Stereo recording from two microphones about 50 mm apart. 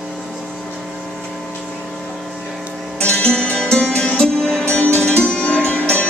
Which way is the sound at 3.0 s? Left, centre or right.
Left.